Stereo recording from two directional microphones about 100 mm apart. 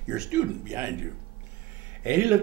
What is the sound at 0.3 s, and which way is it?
Speech, 15° right (ahead or behind).